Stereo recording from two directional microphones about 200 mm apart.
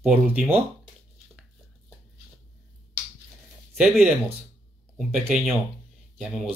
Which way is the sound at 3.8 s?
5° right (ahead or behind).